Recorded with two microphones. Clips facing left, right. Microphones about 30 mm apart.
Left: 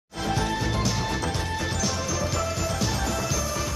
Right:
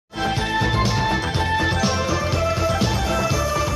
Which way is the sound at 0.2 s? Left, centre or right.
Right.